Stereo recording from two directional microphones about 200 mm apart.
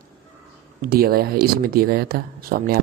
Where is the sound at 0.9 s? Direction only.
50° right (ahead or behind).